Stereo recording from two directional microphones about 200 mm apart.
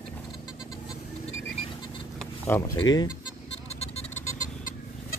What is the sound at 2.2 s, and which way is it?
Speech, 10° left (ahead or behind).